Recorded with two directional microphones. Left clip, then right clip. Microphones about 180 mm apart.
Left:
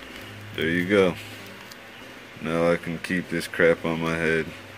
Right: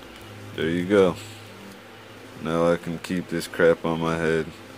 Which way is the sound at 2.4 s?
10° right (ahead or behind).